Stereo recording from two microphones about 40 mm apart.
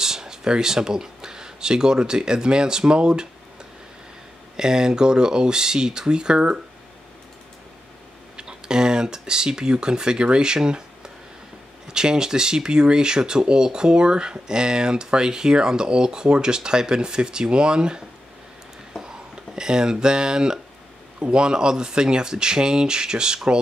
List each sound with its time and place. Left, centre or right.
0.0 s speech: centre
4.6 s speech: centre
8.4 s speech: centre